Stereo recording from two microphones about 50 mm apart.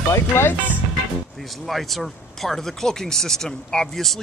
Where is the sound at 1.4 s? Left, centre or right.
Centre.